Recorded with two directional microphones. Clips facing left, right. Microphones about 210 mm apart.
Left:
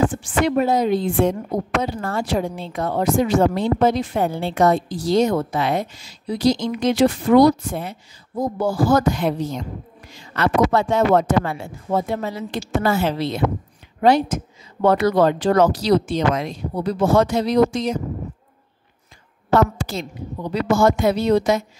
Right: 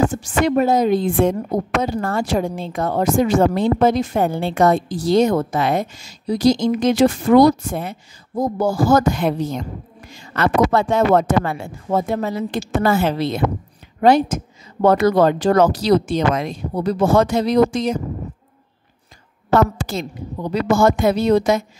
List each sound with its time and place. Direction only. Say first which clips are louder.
0.0 s a woman's voice: right 1 dB; 40° right (ahead or behind)
19.5 s a woman's voice: right 1 dB; 50° right (ahead or behind)